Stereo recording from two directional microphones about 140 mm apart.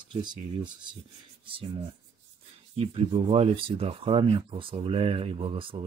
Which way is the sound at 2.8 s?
45° right (ahead or behind).